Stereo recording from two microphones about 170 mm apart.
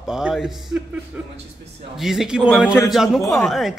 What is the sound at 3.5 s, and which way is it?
Speech, centre (ahead or behind).